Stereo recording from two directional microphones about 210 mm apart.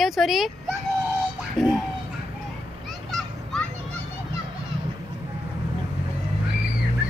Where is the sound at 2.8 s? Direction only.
Centre (ahead or behind).